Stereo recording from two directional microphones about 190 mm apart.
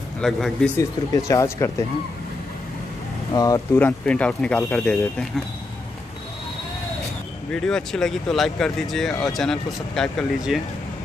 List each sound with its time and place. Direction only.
0.2 s speech: 5° left (ahead or behind)
0.7 s speech: 15° left (ahead or behind)
3.3 s speech: 20° left (ahead or behind)
7.5 s speech: 5° left (ahead or behind)